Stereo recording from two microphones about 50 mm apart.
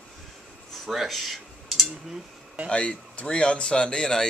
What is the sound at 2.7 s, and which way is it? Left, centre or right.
Speech, left.